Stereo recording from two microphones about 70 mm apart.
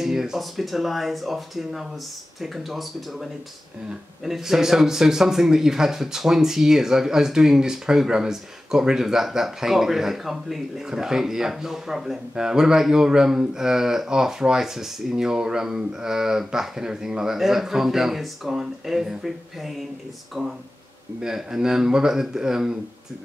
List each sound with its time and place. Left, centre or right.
0.0 s speech: centre